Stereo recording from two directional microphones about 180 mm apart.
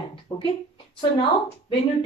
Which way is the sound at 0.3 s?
25° left (ahead or behind).